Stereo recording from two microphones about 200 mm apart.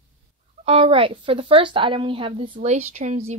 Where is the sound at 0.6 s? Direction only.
30° right (ahead or behind).